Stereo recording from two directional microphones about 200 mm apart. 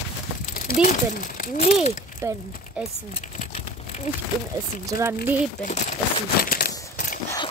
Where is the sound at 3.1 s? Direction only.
40° left (ahead or behind).